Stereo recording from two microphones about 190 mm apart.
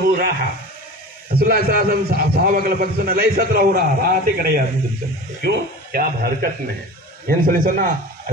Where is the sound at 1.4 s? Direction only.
50° right (ahead or behind).